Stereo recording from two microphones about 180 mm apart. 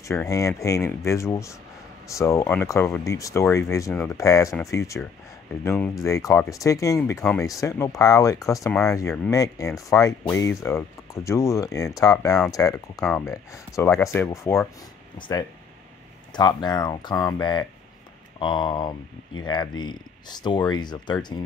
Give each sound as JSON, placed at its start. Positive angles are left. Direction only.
{"t": 0.0, "sound": "speech", "side_deg": 15}
{"t": 12.9, "sound": "speech", "side_deg": 5}
{"t": 13.2, "sound": "speech", "side_deg": 15}